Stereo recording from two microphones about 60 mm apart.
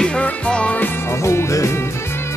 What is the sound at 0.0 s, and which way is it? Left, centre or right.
Music, centre.